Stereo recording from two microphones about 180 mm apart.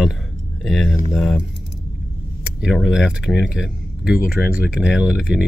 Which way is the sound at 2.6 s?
Centre (ahead or behind).